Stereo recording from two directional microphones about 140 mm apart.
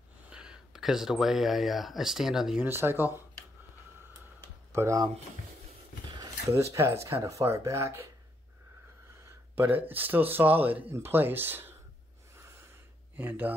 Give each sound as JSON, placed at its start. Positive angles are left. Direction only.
{"t": 0.3, "sound": "speech", "side_deg": -5}
{"t": 2.7, "sound": "speech", "side_deg": -15}
{"t": 4.7, "sound": "speech", "side_deg": -20}
{"t": 6.5, "sound": "speech", "side_deg": -20}
{"t": 9.6, "sound": "speech", "side_deg": -10}
{"t": 12.4, "sound": "a sound", "side_deg": -20}
{"t": 13.1, "sound": "speech", "side_deg": -15}